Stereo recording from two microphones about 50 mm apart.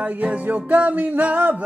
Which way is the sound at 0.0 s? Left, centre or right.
Right.